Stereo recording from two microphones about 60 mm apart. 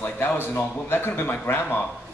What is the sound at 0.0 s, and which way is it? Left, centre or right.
A man's voice, left.